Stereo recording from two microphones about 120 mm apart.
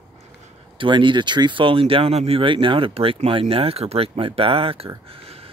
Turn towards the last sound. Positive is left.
turn(degrees=-50)  # may be behind; listen again after turning